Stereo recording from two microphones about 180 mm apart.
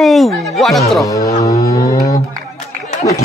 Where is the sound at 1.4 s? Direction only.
20° left (ahead or behind).